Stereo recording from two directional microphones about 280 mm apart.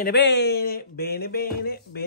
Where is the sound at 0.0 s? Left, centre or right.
Left.